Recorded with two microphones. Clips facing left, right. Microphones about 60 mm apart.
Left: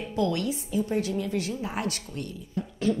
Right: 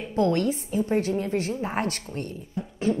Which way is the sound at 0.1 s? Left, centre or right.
Right.